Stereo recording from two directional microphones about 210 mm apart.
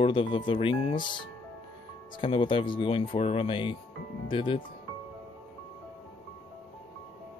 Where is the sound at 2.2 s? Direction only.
25° left (ahead or behind).